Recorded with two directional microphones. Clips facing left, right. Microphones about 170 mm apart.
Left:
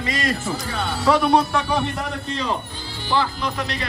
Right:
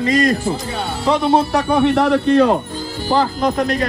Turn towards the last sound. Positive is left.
turn(degrees=-45)  # may be behind; listen again after turning